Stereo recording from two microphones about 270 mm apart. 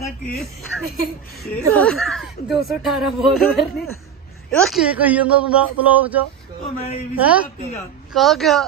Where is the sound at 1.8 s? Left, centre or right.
Centre.